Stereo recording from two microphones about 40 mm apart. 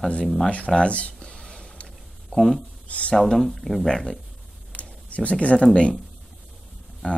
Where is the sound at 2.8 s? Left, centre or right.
Left.